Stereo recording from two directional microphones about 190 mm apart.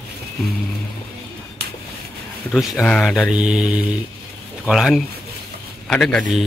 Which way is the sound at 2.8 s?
Centre (ahead or behind).